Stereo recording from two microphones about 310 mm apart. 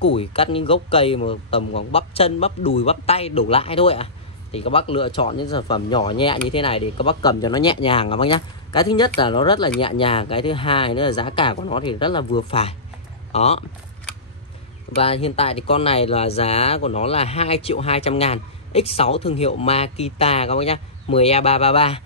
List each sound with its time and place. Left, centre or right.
0.1 s a man's voice: centre
15.0 s a man's voice: centre